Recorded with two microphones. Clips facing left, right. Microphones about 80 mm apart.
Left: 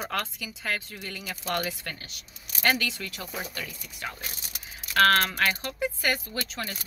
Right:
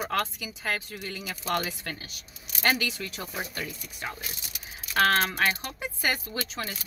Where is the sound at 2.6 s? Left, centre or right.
Centre.